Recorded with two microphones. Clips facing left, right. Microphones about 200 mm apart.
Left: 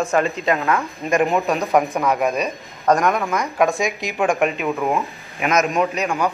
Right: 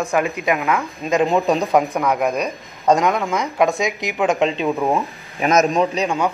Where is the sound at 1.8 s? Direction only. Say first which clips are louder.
Even; centre (ahead or behind).